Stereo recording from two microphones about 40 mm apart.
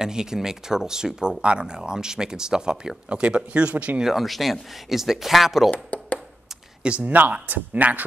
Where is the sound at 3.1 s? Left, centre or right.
Right.